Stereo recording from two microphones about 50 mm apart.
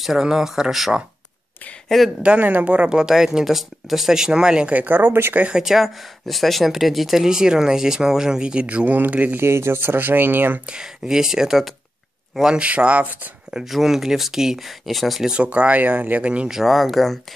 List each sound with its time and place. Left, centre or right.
0.2 s speech: centre
1.9 s speech: centre
2.4 s speech: right; by 4.6 s centre
4.8 s speech: right
5.5 s speech: centre; by 9.4 s right
9.4 s speech: right
10.7 s speech: centre
12.6 s speech: right
13.7 s speech: centre
15.3 s speech: right
16.4 s speech: centre